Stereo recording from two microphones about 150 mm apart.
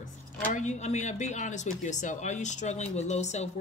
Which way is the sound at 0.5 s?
55° left (ahead or behind).